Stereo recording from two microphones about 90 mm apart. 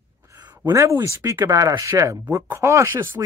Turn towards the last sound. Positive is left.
turn(degrees=-35)  # may be behind; listen again after turning